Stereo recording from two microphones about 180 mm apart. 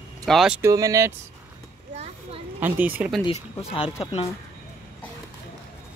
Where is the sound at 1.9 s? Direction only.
35° right (ahead or behind).